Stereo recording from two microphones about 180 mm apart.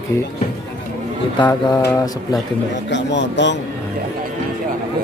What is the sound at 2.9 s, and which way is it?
Speech, 75° left (ahead or behind).